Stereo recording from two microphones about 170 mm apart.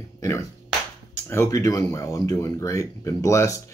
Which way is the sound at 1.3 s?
15° left (ahead or behind).